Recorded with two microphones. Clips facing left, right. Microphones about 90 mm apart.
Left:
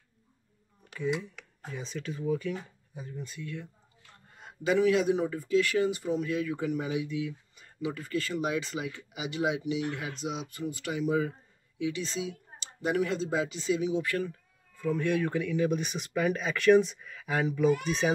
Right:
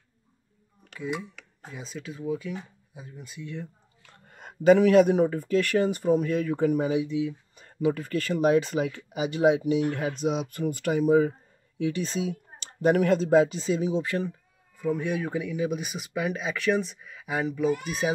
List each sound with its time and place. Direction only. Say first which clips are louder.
0.9 s speech: left 1 dB; 5° right (ahead or behind)
4.3 s speech: right 10 dB; 55° right (ahead or behind)
6.9 s speech: right 6 dB; 25° right (ahead or behind)
7.5 s speech: right 12 dB; 45° right (ahead or behind)
14.0 s speech: right 2 dB; 25° right (ahead or behind)
14.8 s speech: even; 15° right (ahead or behind)